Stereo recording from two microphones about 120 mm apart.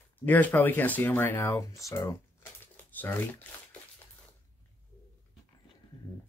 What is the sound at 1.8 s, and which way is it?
Speech, 25° left (ahead or behind).